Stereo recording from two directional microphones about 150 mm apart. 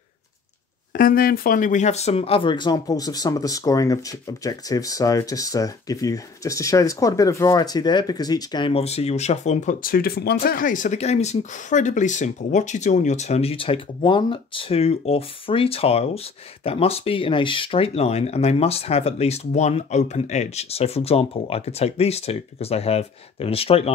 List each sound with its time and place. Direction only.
0.9 s speech: 70° left (ahead or behind); by 23.9 s 40° left (ahead or behind)